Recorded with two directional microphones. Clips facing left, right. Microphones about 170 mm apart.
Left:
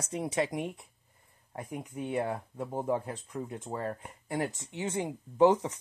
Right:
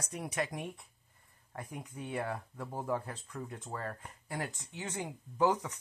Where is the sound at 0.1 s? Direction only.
25° left (ahead or behind).